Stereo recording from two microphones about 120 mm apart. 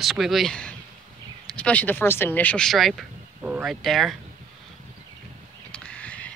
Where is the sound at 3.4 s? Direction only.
10° right (ahead or behind).